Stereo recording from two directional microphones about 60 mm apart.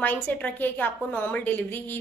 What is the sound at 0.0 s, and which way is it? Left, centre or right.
A woman's voice, left.